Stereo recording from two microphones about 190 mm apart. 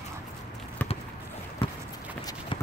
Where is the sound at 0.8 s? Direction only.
10° left (ahead or behind).